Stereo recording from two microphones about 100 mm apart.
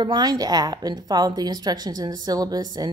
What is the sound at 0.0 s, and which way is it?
Speech, 45° right (ahead or behind).